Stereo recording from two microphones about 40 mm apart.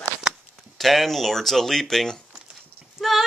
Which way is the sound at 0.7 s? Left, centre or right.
Centre.